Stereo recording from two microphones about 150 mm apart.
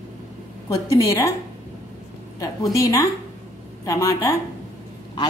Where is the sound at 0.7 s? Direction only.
20° left (ahead or behind).